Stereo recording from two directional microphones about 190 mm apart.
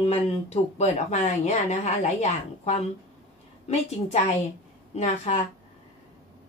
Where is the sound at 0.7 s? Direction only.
35° left (ahead or behind).